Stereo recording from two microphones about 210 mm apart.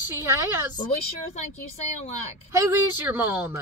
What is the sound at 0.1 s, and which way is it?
Speech, 10° right (ahead or behind).